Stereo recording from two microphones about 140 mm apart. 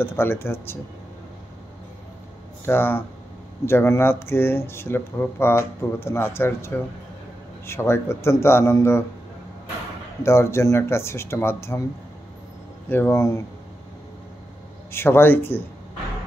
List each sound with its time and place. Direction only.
0.0 s speech: 15° left (ahead or behind)
2.6 s speech: 15° left (ahead or behind)
10.2 s speech: 20° left (ahead or behind)
12.8 s speech: 15° left (ahead or behind)
14.9 s speech: 15° left (ahead or behind)